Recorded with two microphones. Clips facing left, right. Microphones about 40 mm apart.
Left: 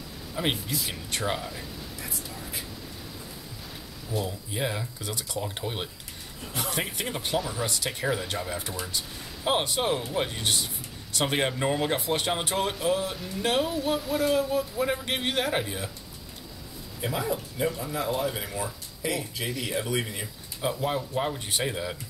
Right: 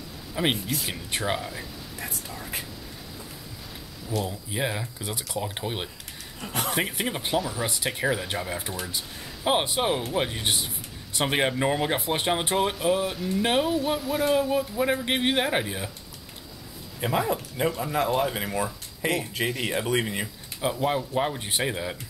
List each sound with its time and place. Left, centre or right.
0.4 s speech: centre
1.3 s speech: centre
2.0 s whispering: right
4.1 s speech: centre
7.3 s speech: centre
7.6 s speech: centre
13.4 s speech: centre
14.2 s speech: centre
17.0 s speech: right
17.6 s speech: right
20.6 s speech: centre